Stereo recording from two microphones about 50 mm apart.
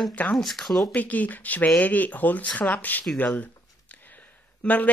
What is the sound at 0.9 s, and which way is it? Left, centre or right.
Speech, left.